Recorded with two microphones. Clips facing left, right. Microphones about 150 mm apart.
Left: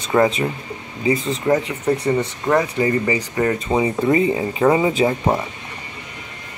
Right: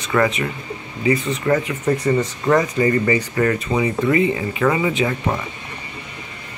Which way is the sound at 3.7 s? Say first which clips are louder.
Left 1 dB; 30° left (ahead or behind).